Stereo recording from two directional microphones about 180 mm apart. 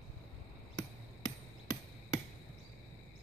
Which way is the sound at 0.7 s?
20° left (ahead or behind).